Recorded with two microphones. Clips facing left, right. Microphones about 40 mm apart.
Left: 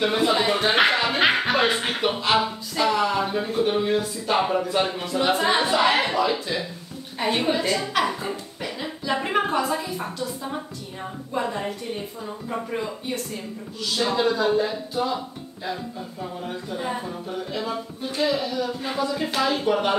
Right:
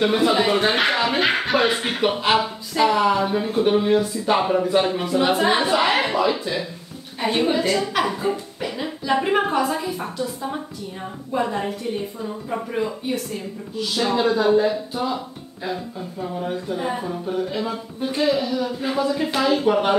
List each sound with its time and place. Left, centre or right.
0.0 s speech: centre
0.9 s speech: centre
2.3 s speech: centre
3.2 s speech: centre
4.4 s speech: centre
4.6 s a woman's voice: centre